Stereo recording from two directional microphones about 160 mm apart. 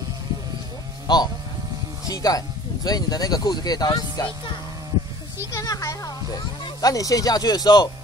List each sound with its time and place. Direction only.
1.0 s speech: 25° left (ahead or behind)